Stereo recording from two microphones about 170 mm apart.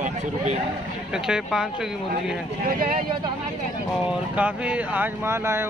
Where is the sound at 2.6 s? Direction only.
55° right (ahead or behind).